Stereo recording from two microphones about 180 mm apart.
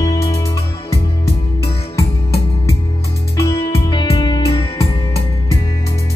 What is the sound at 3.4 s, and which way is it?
Music, 30° left (ahead or behind).